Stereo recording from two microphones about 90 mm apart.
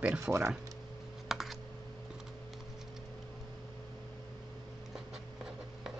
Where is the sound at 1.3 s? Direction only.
Centre (ahead or behind).